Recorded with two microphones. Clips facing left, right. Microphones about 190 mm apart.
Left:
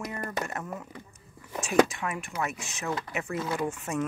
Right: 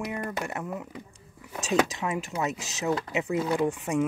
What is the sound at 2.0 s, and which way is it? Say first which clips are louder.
Speech: right 3 dB; 20° right (ahead or behind).